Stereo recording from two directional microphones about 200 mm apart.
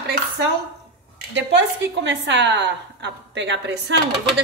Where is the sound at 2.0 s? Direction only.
65° right (ahead or behind).